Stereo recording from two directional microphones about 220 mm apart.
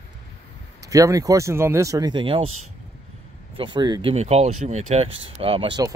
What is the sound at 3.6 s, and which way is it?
Speech, 20° right (ahead or behind).